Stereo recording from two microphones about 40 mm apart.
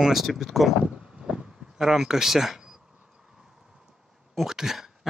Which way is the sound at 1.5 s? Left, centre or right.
Centre.